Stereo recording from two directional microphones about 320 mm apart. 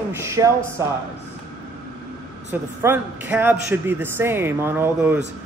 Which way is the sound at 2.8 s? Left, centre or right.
Centre.